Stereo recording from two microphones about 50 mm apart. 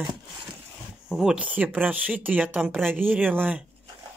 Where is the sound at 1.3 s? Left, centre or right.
Right.